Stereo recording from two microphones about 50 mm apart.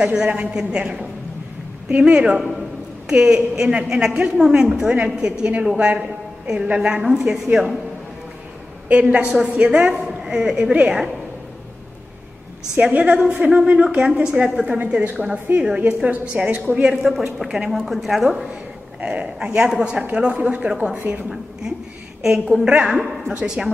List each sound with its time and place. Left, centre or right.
0.1 s a woman's voice: centre
8.8 s a woman's voice: right
12.8 s a woman's voice: right
17.2 s a woman's voice: centre
18.5 s a man's voice: right